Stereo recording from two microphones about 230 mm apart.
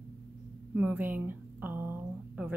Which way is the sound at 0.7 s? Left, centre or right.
Centre.